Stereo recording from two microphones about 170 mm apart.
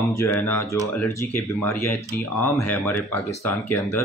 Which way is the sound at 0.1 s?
15° left (ahead or behind).